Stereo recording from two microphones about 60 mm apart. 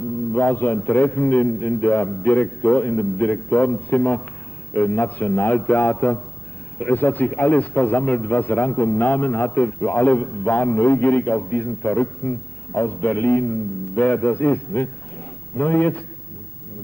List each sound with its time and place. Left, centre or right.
0.3 s a man's voice: left